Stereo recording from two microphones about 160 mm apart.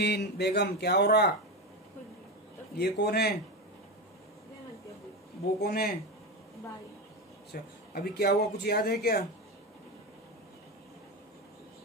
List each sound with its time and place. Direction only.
0.0 s speech: 90° left
2.8 s a man's voice: 85° left
5.6 s speech: 75° left (ahead or behind)
7.5 s speech: 80° left